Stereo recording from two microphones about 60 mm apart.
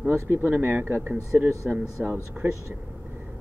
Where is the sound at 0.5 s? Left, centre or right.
Right.